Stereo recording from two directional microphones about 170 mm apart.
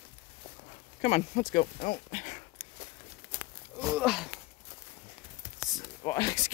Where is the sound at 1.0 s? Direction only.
45° left (ahead or behind).